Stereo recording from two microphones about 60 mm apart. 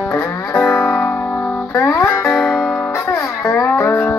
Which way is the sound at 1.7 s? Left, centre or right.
Left.